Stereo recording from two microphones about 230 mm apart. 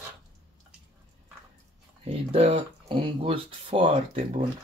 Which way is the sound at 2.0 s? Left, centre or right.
Right.